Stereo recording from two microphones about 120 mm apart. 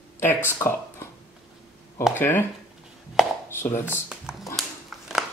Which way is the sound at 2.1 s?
20° left (ahead or behind).